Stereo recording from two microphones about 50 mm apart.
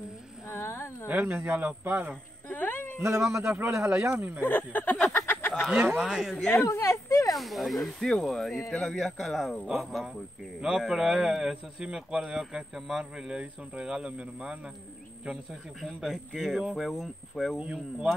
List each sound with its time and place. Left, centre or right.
0.5 s a sound: left
1.0 s speech: right
1.6 s speech: right
2.5 s a sound: left
3.0 s speech: right
4.2 s speech: right
4.5 s speech: left
5.2 s a sound: left
6.0 s a man's voice: centre
6.5 s a woman's voice: left
7.2 s speech: centre
9.7 s a man's voice: centre
16.0 s speech: centre
17.6 s a man's voice: centre